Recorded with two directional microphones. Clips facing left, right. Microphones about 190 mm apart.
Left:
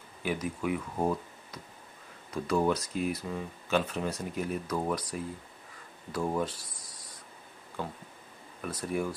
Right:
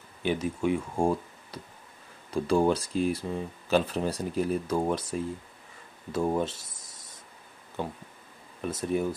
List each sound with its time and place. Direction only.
0.2 s speech: 25° right (ahead or behind)